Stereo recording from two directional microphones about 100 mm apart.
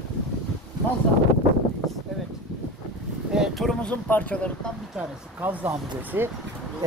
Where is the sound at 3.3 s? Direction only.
Centre (ahead or behind).